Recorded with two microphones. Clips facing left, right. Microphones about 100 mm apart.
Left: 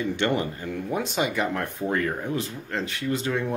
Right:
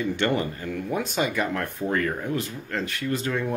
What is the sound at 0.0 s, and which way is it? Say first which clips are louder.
Speech: even; 20° left (ahead or behind).